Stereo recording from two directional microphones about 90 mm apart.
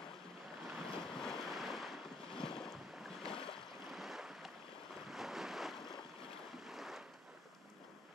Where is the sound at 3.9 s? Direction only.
Centre (ahead or behind).